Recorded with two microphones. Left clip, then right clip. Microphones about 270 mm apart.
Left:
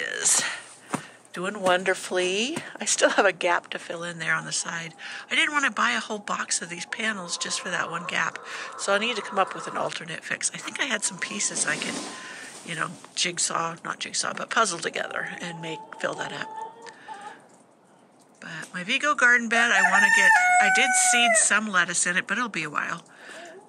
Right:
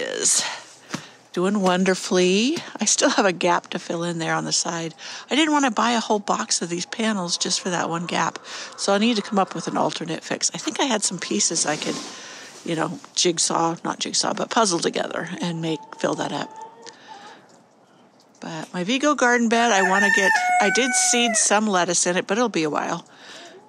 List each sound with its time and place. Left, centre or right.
0.0 s a sound: centre
1.3 s speech: centre
18.4 s speech: centre